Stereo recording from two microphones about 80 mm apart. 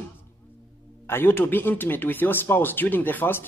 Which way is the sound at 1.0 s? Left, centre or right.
Left.